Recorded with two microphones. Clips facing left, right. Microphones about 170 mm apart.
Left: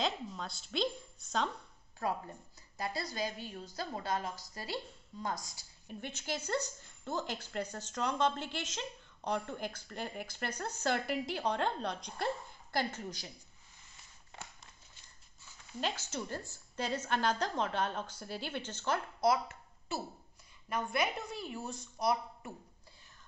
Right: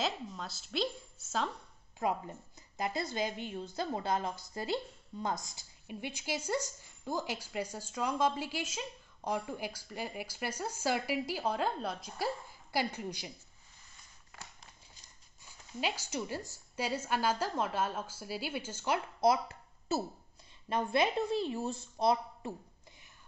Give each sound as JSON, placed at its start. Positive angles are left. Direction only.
{"t": 0.0, "sound": "a woman's voice", "side_deg": 0}
{"t": 2.0, "sound": "a woman's voice", "side_deg": -15}
{"t": 5.9, "sound": "a woman's voice", "side_deg": -10}
{"t": 15.4, "sound": "a woman's voice", "side_deg": -10}
{"t": 20.6, "sound": "a woman's voice", "side_deg": -25}